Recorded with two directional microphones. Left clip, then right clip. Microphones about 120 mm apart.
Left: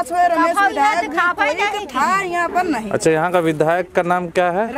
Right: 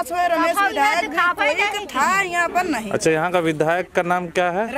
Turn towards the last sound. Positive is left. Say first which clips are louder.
# left 3 dB
turn(degrees=0)  # may be behind; listen again after turning